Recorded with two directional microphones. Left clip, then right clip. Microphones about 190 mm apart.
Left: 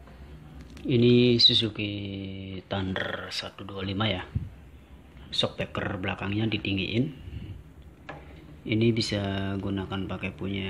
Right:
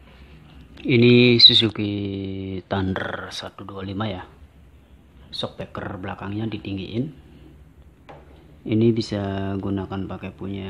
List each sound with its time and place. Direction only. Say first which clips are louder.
0.8 s speech: right 6 dB; 10° right (ahead or behind)
1.8 s speech: right 6 dB; 25° right (ahead or behind); by 4.3 s 5° right (ahead or behind)
5.3 s speech: left 2 dB; centre (ahead or behind)
8.6 s speech: right 5 dB; 15° right (ahead or behind)